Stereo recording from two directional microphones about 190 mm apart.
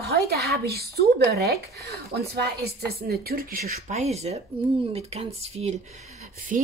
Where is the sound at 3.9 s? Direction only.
35° right (ahead or behind).